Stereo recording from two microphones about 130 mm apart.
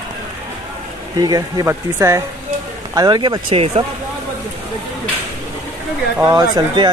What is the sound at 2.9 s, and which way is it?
Speech, 30° right (ahead or behind).